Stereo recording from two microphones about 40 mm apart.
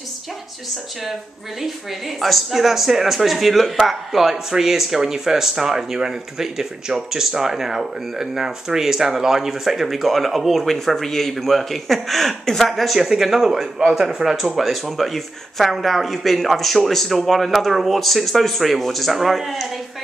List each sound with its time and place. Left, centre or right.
1.6 s speech: centre
13.1 s speech: centre